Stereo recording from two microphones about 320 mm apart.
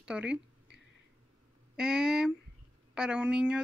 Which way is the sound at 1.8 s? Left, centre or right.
Centre.